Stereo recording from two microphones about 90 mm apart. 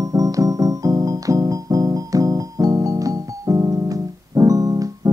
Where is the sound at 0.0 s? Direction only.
40° right (ahead or behind).